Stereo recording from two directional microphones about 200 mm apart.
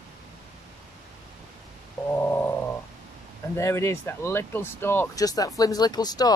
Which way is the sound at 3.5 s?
15° left (ahead or behind).